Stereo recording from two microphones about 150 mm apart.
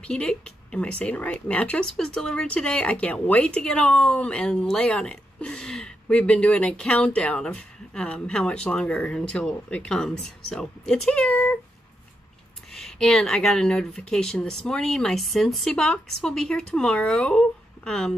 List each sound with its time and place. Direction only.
0.0 s speech: 5° left (ahead or behind)
12.7 s speech: 5° left (ahead or behind)